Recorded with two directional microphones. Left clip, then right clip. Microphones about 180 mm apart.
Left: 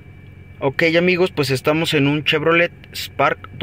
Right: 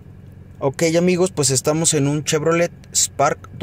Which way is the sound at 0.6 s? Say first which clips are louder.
Left 2 dB; 20° right (ahead or behind).